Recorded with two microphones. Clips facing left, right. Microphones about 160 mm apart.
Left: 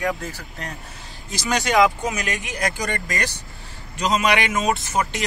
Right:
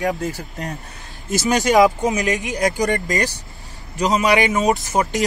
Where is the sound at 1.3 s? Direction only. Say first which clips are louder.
Right 6 dB; 45° right (ahead or behind).